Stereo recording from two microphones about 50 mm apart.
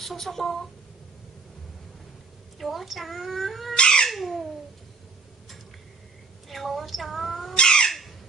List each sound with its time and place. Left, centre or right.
0.0 s speech: centre
2.6 s speech: centre
3.7 s cat: centre
4.1 s a sound: centre
6.5 s speech: centre
7.5 s bird: centre